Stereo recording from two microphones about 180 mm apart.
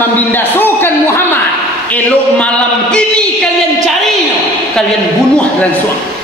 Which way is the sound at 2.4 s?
5° left (ahead or behind).